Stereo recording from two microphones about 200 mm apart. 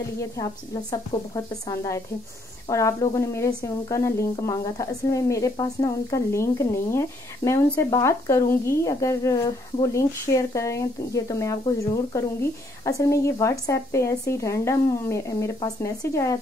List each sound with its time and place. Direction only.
1.3 s a woman's voice: 15° left (ahead or behind)